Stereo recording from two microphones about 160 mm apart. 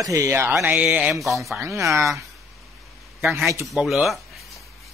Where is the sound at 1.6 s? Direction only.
20° right (ahead or behind).